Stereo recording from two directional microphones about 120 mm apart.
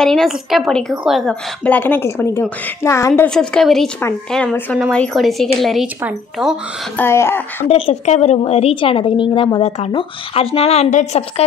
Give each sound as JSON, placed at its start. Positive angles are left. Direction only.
{"t": 0.0, "sound": "a woman's voice", "side_deg": 5}
{"t": 1.6, "sound": "a woman's voice", "side_deg": 15}
{"t": 3.3, "sound": "a woman's voice", "side_deg": 5}
{"t": 7.0, "sound": "speech", "side_deg": 20}
{"t": 7.6, "sound": "a woman's voice", "side_deg": 55}
{"t": 8.0, "sound": "a woman's voice", "side_deg": 70}
{"t": 9.6, "sound": "a woman's voice", "side_deg": 60}